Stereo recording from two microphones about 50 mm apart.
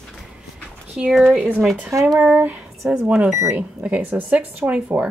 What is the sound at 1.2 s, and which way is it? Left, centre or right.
Speech, centre.